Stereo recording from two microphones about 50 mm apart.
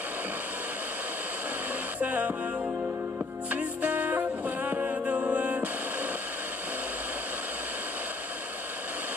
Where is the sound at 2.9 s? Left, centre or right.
Right.